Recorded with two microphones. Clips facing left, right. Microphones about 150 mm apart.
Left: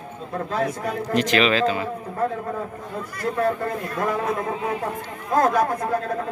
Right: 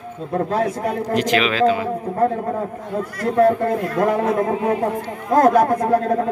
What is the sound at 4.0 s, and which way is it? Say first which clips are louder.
Speech: right 6 dB; 65° right (ahead or behind).